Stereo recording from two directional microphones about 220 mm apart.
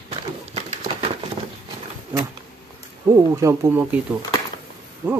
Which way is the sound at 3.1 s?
15° right (ahead or behind).